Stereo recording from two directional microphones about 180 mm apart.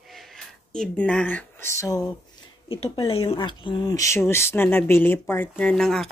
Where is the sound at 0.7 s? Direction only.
5° left (ahead or behind).